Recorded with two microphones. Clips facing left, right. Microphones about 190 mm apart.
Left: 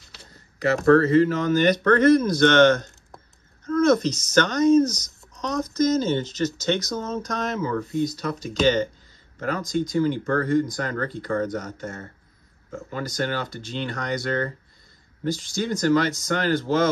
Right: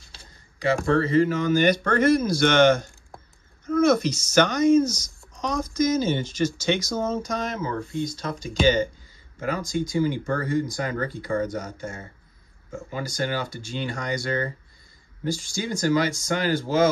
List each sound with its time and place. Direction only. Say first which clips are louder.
0.9 s speech: left 3 dB; 5° right (ahead or behind)
7.9 s speech: left 4 dB; 40° left (ahead or behind)
8.3 s speech: right 2 dB; centre (ahead or behind)